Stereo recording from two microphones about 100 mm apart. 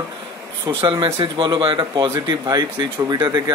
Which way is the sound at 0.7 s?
55° right (ahead or behind).